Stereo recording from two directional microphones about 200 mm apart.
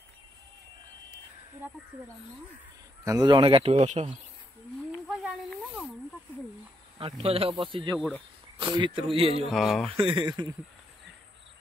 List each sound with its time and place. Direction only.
3.1 s speech: 20° right (ahead or behind)
7.0 s speech: 30° right (ahead or behind)
9.5 s speech: centre (ahead or behind)
9.8 s speech: 25° right (ahead or behind)